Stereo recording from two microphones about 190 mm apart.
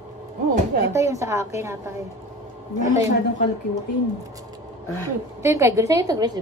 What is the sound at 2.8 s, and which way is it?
Speech, 15° right (ahead or behind).